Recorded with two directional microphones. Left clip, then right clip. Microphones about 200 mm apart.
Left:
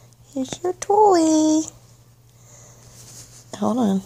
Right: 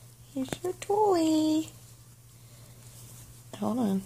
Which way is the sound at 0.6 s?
30° left (ahead or behind).